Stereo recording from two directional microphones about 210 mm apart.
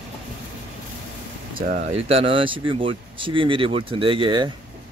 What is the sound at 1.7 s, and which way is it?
Speech, 30° right (ahead or behind).